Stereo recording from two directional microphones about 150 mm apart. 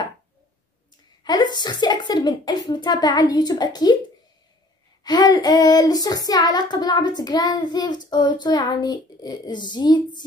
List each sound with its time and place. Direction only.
1.2 s child singing: 30° left (ahead or behind)
5.0 s child singing: 25° left (ahead or behind)